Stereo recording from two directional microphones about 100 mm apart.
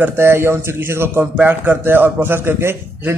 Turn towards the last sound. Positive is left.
turn(degrees=-25)  # may be behind; listen again after turning